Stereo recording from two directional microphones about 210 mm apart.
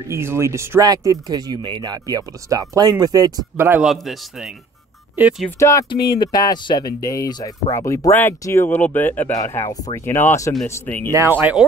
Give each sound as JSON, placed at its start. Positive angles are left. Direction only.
{"t": 0.1, "sound": "speech", "side_deg": -10}
{"t": 5.6, "sound": "speech", "side_deg": 15}
{"t": 5.9, "sound": "speech", "side_deg": 50}
{"t": 6.2, "sound": "speech", "side_deg": 20}
{"t": 11.1, "sound": "speech", "side_deg": -10}